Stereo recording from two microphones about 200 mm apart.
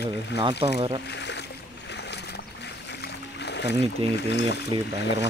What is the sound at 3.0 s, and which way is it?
Music, 55° left (ahead or behind).